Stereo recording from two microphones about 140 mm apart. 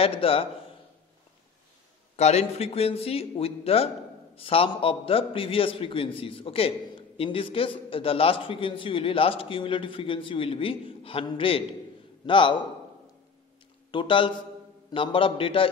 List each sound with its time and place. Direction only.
0.0 s speech: 40° left (ahead or behind)
2.1 s a man's voice: 50° left (ahead or behind)
13.9 s a man's voice: 35° left (ahead or behind)